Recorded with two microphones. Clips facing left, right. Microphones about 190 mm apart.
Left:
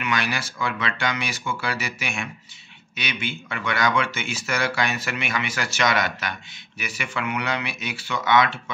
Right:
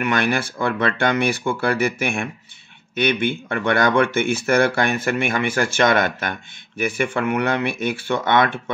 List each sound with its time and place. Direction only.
0.0 s speech: 55° right (ahead or behind)